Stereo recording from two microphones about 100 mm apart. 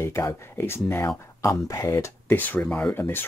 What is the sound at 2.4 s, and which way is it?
Speech, 15° left (ahead or behind).